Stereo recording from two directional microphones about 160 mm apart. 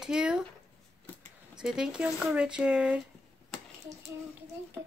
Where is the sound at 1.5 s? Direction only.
5° right (ahead or behind).